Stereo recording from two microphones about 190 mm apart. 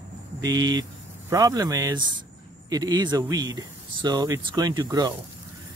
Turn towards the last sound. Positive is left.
turn(degrees=-20)  # may be behind; listen again after turning